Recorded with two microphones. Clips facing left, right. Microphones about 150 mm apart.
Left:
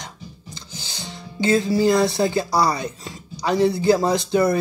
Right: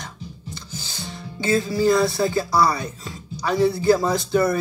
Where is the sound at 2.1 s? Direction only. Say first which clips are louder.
Left 1 dB; 20° left (ahead or behind).